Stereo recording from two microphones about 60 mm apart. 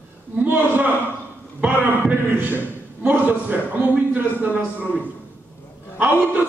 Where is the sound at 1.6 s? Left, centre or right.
Right.